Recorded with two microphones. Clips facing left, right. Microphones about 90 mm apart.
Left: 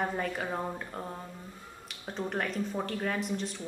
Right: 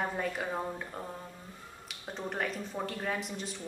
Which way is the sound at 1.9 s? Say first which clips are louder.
Left 3 dB; centre (ahead or behind).